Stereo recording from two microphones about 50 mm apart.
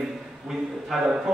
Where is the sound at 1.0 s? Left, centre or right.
Centre.